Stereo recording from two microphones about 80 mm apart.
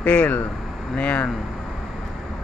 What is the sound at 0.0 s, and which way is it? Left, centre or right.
Speech, centre.